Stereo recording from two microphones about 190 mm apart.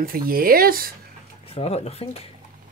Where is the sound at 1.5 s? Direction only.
35° left (ahead or behind).